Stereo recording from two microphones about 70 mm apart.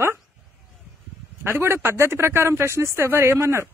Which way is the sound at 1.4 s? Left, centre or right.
Right.